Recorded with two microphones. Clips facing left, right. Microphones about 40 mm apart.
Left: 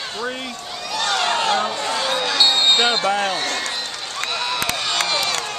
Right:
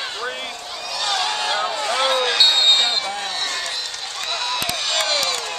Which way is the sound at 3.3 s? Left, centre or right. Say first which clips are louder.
Left 2 dB; centre.